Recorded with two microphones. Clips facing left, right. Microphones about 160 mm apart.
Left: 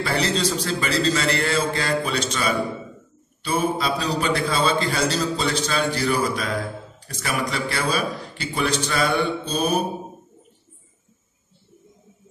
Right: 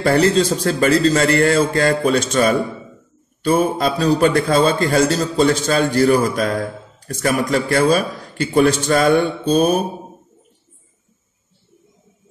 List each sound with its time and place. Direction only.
0.0 s a man's voice: 50° right (ahead or behind)